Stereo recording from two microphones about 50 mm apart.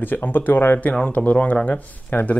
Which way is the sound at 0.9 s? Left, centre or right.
Left.